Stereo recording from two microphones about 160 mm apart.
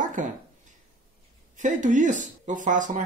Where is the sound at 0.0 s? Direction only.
50° right (ahead or behind).